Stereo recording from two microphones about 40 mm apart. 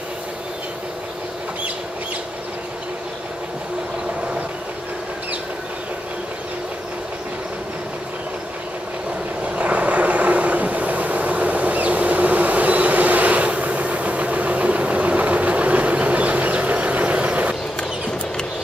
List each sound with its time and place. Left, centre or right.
9.4 s vehicle: right